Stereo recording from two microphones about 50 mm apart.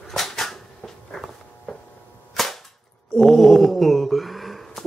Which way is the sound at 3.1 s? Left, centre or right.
Centre.